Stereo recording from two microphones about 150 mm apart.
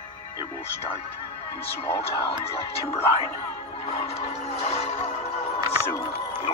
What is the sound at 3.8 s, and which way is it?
Music, 40° left (ahead or behind).